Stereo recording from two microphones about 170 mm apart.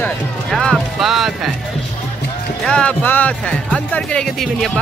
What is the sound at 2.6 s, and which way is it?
Speech, 5° left (ahead or behind).